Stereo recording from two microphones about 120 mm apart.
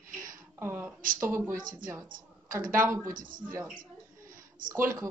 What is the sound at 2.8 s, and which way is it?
Speech, 25° right (ahead or behind).